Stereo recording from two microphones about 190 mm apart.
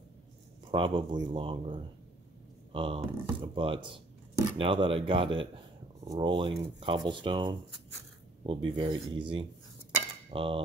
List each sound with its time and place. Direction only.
0.7 s speech: 25° right (ahead or behind)